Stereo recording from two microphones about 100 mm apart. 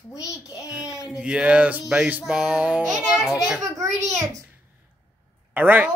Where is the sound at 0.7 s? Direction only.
10° right (ahead or behind).